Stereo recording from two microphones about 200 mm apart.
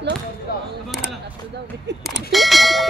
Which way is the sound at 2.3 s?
Centre (ahead or behind).